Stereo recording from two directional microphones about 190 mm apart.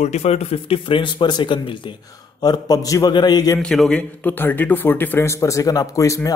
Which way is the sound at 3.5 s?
Centre (ahead or behind).